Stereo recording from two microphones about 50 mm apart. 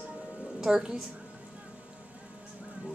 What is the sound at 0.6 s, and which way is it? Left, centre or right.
Speech, centre.